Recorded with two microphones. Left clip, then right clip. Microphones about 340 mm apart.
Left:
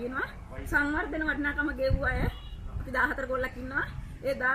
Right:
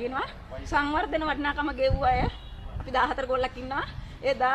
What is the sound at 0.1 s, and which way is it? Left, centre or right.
A woman's voice, centre.